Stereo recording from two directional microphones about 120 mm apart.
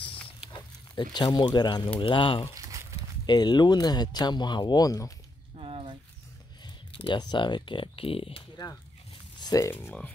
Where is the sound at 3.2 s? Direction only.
40° left (ahead or behind).